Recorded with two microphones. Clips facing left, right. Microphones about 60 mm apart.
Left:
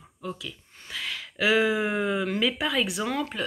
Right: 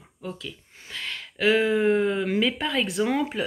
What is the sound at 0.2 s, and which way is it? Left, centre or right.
Speech, centre.